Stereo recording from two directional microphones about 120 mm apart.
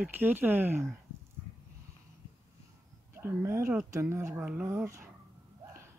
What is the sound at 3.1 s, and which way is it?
Speech, 20° right (ahead or behind).